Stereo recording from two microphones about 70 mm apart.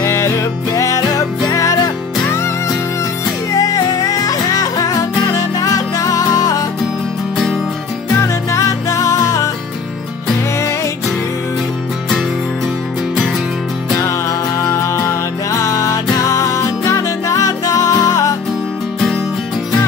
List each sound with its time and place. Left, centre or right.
0.0 s music: left
2.2 s music: left
3.5 s music: left
8.2 s music: left
15.0 s music: left